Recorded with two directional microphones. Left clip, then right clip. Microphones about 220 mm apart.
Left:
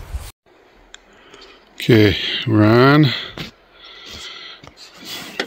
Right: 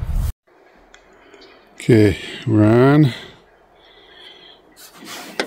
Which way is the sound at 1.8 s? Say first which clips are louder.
Left 1 dB; 10° right (ahead or behind).